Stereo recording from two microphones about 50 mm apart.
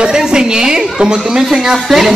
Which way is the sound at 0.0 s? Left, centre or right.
Centre.